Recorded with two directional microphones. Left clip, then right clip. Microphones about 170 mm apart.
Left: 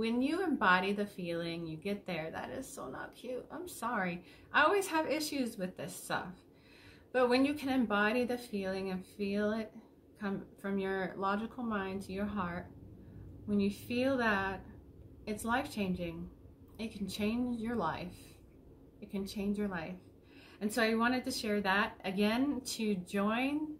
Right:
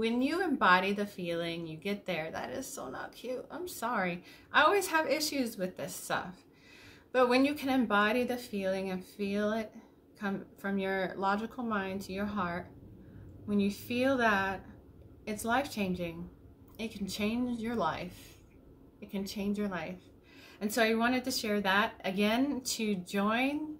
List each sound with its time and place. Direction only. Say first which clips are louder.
0.0 s a woman's voice: right 3 dB; 5° right (ahead or behind)